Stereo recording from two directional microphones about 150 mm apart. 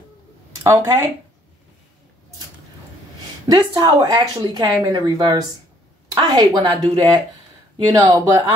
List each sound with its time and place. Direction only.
0.7 s speech: 20° right (ahead or behind)
3.4 s speech: 30° right (ahead or behind)